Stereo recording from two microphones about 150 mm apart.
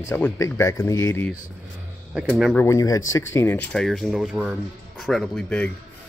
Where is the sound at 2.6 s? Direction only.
20° left (ahead or behind); by 5.7 s 5° left (ahead or behind).